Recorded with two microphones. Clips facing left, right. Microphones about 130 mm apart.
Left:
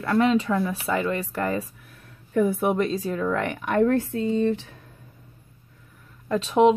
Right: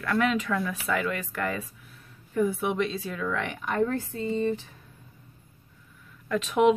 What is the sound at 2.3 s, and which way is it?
Speech, 55° left (ahead or behind).